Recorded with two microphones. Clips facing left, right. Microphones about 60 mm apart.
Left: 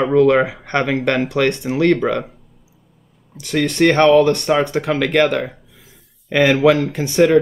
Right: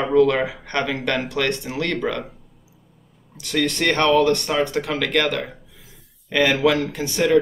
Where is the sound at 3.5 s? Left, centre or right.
Left.